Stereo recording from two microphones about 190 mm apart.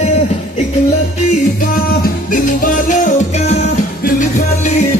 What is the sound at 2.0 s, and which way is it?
Music, 45° left (ahead or behind).